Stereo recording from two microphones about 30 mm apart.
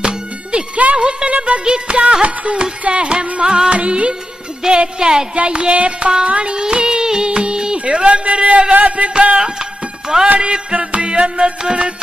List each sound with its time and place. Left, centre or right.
0.0 s music: right
2.2 s music: right
2.9 s music: right
3.4 s speech: right
3.7 s music: right
4.6 s speech: right
5.3 s music: right
6.5 s music: right
8.7 s music: right
9.4 s music: right
10.7 s music: right